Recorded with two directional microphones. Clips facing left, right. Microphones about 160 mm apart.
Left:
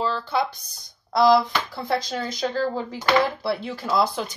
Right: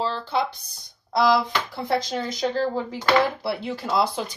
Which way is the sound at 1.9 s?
25° right (ahead or behind).